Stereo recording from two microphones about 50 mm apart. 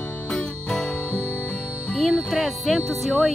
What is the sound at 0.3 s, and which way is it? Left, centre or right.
Music, centre.